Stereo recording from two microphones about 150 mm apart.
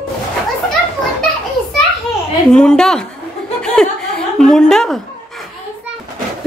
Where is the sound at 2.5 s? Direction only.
5° left (ahead or behind).